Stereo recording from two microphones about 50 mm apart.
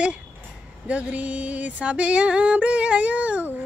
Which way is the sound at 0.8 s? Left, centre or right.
Right.